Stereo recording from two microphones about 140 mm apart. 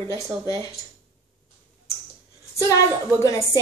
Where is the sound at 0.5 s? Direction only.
20° left (ahead or behind).